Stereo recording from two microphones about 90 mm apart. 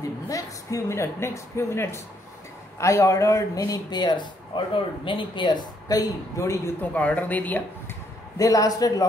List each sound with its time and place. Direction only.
0.3 s speech: 35° left (ahead or behind)
6.8 s speech: 15° left (ahead or behind)
8.4 s speech: 40° left (ahead or behind)